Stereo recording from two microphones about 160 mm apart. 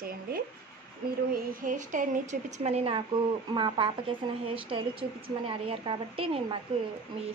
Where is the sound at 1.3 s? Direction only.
60° right (ahead or behind).